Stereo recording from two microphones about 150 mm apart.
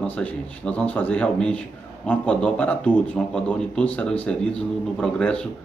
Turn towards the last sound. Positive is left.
turn(degrees=5)  # may be behind; listen again after turning